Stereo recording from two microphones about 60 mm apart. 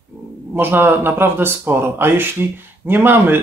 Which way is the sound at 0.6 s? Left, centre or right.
Right.